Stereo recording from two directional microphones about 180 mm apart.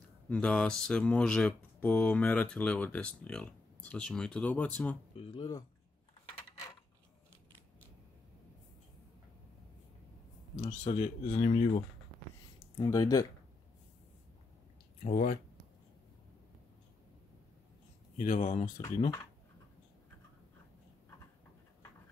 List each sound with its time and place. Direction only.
0.3 s speech: 5° left (ahead or behind)
5.1 s speech: 30° left (ahead or behind)
10.6 s speech: 40° left (ahead or behind)
12.5 s speech: 20° left (ahead or behind)
15.0 s speech: 45° left (ahead or behind)
18.2 s speech: 40° left (ahead or behind)